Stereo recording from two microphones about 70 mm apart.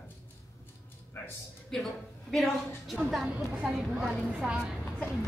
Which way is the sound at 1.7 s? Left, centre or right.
Centre.